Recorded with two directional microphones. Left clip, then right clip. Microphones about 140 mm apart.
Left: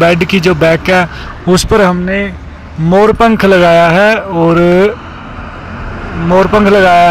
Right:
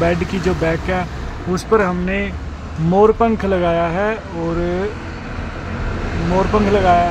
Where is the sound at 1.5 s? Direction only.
50° left (ahead or behind).